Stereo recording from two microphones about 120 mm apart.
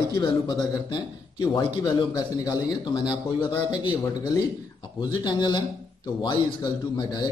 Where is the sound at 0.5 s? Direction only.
35° left (ahead or behind).